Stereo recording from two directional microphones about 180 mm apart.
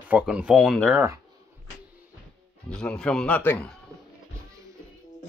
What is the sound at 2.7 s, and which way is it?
Speech, 5° left (ahead or behind).